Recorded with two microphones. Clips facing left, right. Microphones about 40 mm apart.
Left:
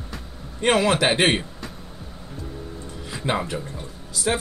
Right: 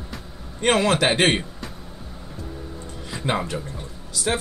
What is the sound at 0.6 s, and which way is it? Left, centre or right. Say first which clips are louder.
Speech: even; centre.